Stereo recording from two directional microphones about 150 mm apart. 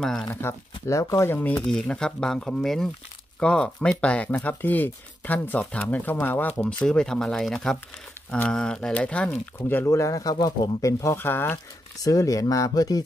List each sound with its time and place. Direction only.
0.3 s speech: 15° left (ahead or behind)
1.7 s speech: 5° left (ahead or behind); by 13.0 s 25° left (ahead or behind)